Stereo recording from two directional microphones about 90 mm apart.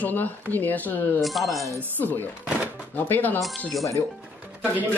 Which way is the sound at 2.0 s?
20° left (ahead or behind).